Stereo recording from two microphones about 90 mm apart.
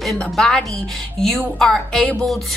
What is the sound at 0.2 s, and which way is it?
A woman's voice, 10° left (ahead or behind).